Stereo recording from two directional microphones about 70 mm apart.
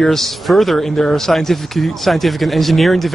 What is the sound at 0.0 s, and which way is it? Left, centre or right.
Speech, centre.